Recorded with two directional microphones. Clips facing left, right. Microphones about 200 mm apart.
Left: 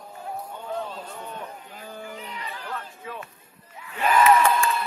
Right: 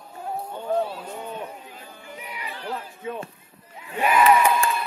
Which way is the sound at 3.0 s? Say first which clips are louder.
Right 6 dB; 25° right (ahead or behind).